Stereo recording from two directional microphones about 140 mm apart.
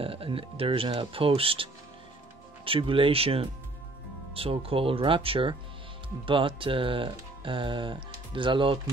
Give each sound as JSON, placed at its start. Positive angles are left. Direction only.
{"t": 0.0, "sound": "speech", "side_deg": -40}